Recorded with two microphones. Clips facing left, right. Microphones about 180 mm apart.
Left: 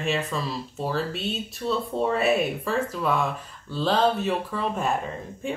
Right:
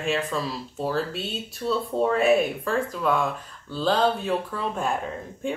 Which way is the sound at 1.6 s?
Centre (ahead or behind).